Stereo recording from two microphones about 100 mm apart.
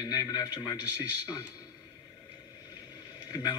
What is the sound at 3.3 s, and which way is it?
Speech, 50° left (ahead or behind).